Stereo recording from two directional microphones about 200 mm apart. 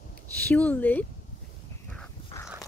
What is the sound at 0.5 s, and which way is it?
Speech, 10° left (ahead or behind).